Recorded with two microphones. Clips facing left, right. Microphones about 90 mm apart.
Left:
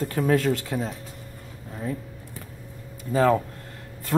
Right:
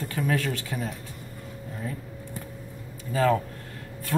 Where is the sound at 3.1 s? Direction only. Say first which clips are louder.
Left 3 dB; 30° left (ahead or behind).